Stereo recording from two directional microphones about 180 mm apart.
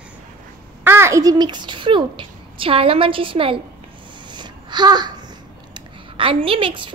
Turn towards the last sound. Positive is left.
turn(degrees=-30)  # may be behind; listen again after turning